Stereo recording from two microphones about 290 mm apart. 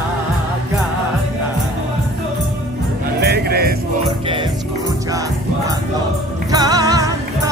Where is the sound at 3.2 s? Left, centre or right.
Right.